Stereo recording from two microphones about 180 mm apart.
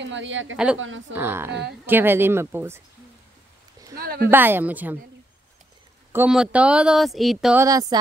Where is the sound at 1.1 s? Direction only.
10° right (ahead or behind).